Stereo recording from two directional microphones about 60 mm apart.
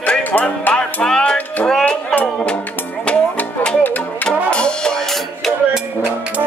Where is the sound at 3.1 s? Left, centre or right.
Centre.